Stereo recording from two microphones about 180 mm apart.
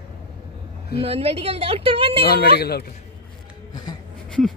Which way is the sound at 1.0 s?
30° right (ahead or behind).